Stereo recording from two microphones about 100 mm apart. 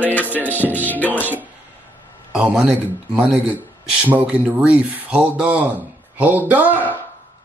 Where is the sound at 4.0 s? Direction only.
15° right (ahead or behind).